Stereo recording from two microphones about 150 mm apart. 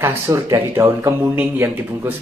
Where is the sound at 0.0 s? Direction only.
15° right (ahead or behind).